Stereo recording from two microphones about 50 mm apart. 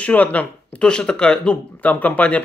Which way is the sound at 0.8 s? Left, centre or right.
Centre.